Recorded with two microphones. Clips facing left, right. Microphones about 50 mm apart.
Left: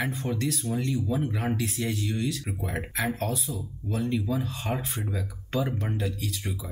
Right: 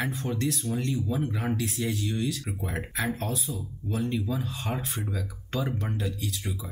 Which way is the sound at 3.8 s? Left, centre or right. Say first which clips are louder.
Even; right.